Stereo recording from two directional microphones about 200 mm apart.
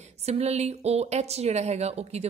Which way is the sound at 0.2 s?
30° right (ahead or behind).